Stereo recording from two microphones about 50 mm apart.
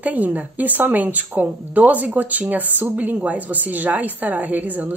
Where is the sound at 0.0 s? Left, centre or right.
Right.